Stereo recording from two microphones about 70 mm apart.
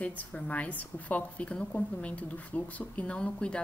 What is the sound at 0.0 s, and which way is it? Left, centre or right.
Speech, left.